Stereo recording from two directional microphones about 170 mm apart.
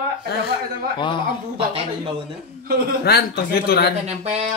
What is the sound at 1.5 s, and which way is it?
Speech, 35° right (ahead or behind).